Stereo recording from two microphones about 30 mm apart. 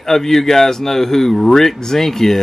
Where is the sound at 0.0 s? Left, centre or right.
Centre.